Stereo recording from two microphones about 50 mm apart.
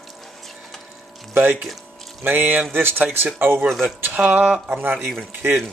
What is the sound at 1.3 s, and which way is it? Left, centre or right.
Speech, right.